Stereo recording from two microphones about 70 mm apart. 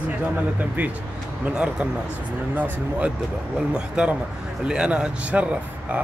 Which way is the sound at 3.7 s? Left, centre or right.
Centre.